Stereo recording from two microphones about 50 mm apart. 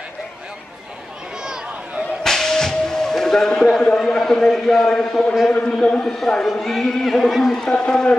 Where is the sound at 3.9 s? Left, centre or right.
Centre.